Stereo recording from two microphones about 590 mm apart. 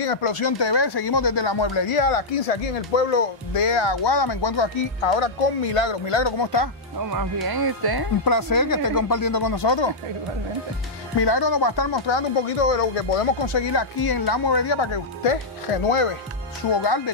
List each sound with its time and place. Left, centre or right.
0.0 s speech: left
7.0 s speech: right
8.2 s speech: left
11.1 s speech: left
13.6 s speech: left
16.8 s speech: left